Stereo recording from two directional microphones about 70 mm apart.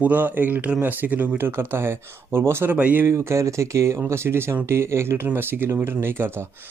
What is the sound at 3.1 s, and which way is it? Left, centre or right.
Speech, right.